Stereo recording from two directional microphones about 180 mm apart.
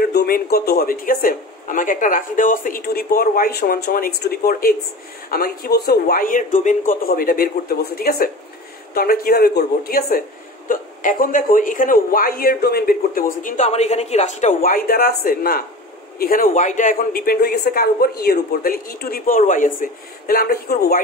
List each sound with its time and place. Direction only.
0.0 s speech: 60° left (ahead or behind)